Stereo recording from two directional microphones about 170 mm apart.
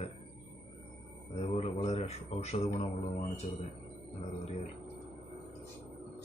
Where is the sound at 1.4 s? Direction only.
40° left (ahead or behind).